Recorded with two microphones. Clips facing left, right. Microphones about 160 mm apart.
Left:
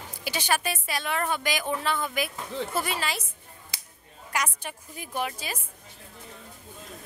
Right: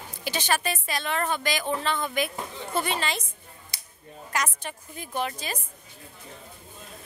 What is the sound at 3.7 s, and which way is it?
Finger snapping, 90° left.